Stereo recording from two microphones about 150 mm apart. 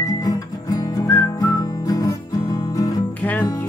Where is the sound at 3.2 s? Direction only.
10° left (ahead or behind).